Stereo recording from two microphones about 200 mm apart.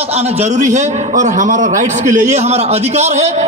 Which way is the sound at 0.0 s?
30° right (ahead or behind).